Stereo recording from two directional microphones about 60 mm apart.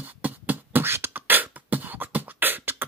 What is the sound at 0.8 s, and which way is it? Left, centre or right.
Beatboxing, right.